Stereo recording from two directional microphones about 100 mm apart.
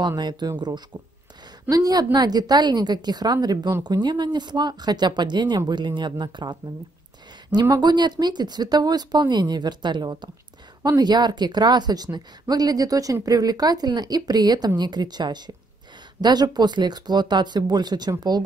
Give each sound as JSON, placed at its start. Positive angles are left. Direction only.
{"t": 0.0, "sound": "a woman's voice", "side_deg": -45}
{"t": 7.8, "sound": "a woman's voice", "side_deg": -45}